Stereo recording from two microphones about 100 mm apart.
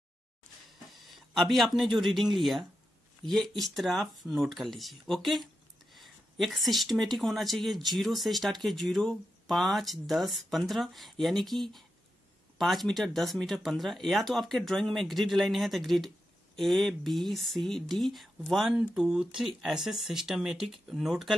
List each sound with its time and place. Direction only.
0.7 s speech: centre (ahead or behind)